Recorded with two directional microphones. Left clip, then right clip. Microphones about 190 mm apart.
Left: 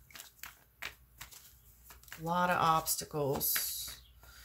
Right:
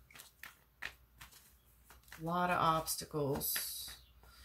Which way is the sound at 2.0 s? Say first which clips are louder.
Left 4 dB; 25° left (ahead or behind).